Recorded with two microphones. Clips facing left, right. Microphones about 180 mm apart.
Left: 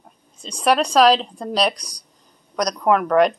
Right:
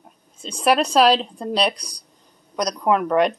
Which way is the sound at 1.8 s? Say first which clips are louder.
Right 1 dB; 30° right (ahead or behind).